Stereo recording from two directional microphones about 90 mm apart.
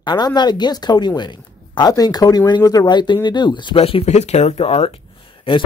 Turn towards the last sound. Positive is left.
turn(degrees=90)